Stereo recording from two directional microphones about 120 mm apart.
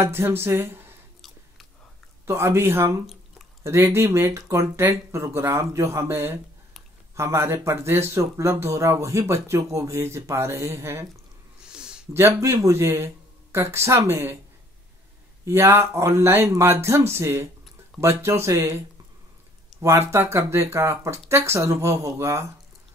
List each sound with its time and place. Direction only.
0.0 s speech: 20° right (ahead or behind)
2.2 s speech: 20° right (ahead or behind)
11.6 s a sound: 5° right (ahead or behind)
12.1 s speech: 20° right (ahead or behind)
15.4 s speech: 20° right (ahead or behind)
19.8 s speech: 25° right (ahead or behind)